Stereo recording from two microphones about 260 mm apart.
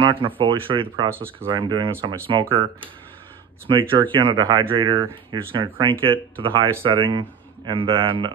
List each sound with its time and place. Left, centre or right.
0.0 s speech: centre